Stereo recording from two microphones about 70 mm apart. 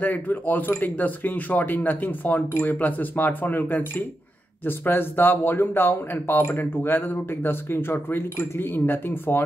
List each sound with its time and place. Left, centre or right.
0.0 s speech: left